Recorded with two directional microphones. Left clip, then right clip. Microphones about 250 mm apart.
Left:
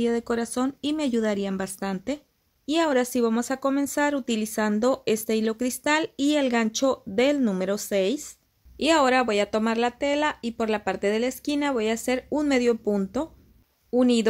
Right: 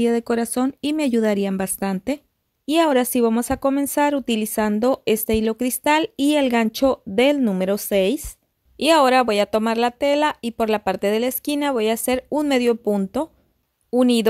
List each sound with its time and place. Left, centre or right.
0.0 s speech: right